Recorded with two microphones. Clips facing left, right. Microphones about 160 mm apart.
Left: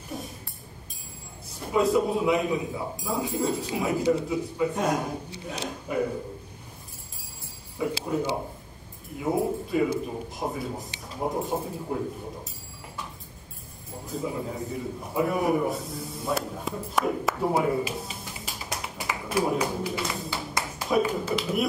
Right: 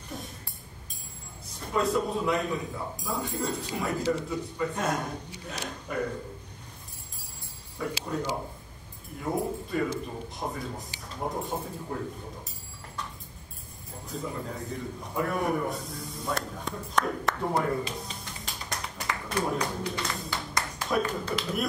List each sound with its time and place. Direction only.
1.6 s a man's voice: 5° left (ahead or behind)
7.8 s a man's voice: 10° left (ahead or behind)
9.7 s a man's voice: 10° left (ahead or behind)
11.5 s speech: 20° left (ahead or behind)
14.0 s a man's voice: 5° left (ahead or behind)